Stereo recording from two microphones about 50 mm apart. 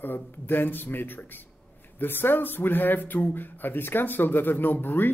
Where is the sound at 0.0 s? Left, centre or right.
Left.